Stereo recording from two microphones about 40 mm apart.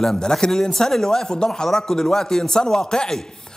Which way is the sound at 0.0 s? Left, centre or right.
Centre.